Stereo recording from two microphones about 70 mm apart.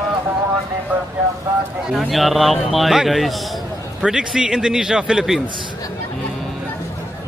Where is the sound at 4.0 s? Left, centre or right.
Centre.